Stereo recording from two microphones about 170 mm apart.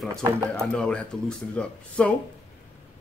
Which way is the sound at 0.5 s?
5° left (ahead or behind).